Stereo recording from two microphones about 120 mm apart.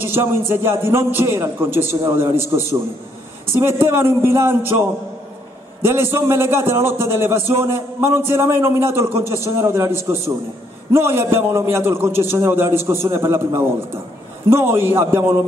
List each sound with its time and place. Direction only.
0.0 s a man's voice: 20° right (ahead or behind)
3.5 s a man's voice: 20° right (ahead or behind)